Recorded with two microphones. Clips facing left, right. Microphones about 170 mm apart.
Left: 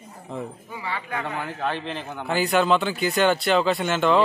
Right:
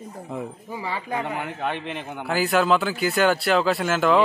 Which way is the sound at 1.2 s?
20° right (ahead or behind).